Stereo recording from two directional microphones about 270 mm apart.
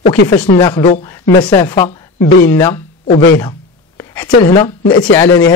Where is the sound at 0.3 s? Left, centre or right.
Centre.